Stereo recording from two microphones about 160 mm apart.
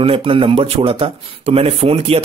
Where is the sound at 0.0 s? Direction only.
35° right (ahead or behind).